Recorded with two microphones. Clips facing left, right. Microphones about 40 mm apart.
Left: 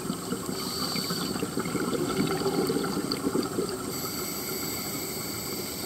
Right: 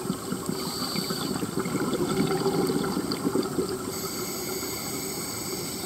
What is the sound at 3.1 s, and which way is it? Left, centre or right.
Vehicle, right.